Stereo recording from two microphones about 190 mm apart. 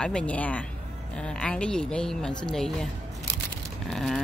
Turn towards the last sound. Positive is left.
turn(degrees=0)  # may be behind; listen again after turning